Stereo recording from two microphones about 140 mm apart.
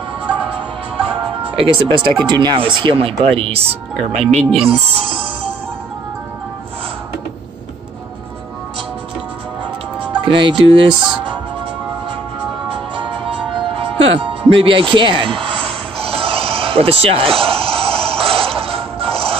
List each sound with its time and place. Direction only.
1.6 s speech: 35° right (ahead or behind)
4.1 s speech: 50° right (ahead or behind)
4.6 s music: 45° right (ahead or behind)
10.2 s speech: 35° right (ahead or behind)
12.6 s music: 35° right (ahead or behind)
13.7 s speech: 40° right (ahead or behind)
16.0 s a sound: 40° right (ahead or behind)